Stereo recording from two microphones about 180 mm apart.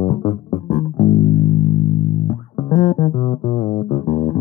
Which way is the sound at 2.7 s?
35° left (ahead or behind).